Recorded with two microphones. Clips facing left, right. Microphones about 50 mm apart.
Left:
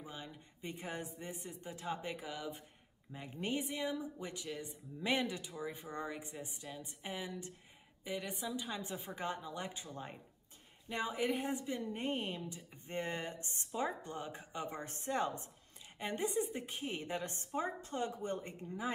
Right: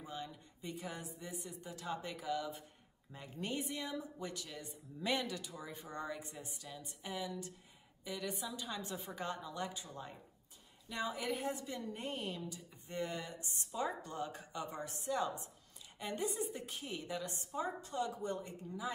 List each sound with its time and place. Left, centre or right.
0.0 s a woman's voice: centre; by 15.5 s left
16.0 s a woman's voice: left